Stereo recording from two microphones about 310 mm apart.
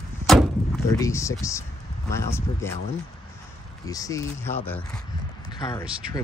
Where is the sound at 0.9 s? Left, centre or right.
Centre.